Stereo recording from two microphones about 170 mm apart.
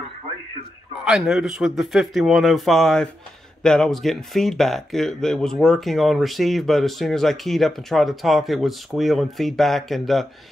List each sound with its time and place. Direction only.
1.0 s speech: 5° right (ahead or behind)